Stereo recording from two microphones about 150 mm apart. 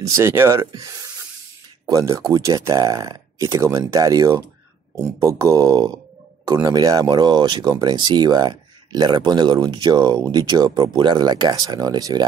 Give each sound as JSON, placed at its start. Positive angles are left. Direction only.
{"t": 0.0, "sound": "speech", "side_deg": -20}
{"t": 1.9, "sound": "speech", "side_deg": -25}